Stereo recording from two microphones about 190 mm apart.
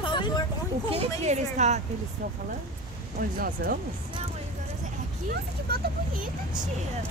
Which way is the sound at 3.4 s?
55° right (ahead or behind).